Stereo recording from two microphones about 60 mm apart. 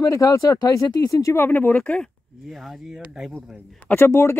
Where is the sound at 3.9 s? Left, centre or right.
Left.